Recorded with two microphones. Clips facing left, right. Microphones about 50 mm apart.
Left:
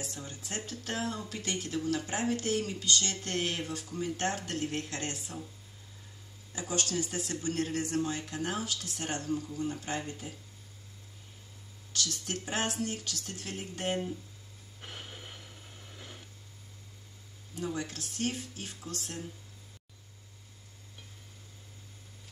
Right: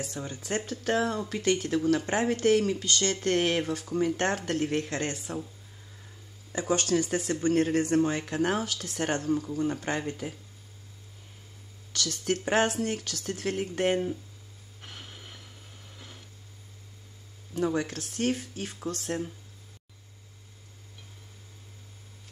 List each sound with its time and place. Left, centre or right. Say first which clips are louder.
0.0 s speech: right 6 dB; right
6.5 s speech: right 7 dB; right
11.9 s speech: right 6 dB; right
14.8 s a sound: left 1 dB; centre
17.6 s speech: right 8 dB; right